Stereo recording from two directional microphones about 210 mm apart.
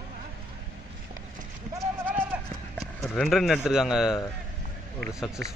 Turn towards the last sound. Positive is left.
turn(degrees=-50)  # may be behind; listen again after turning